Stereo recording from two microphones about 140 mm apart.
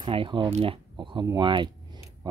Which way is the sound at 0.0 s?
35° right (ahead or behind).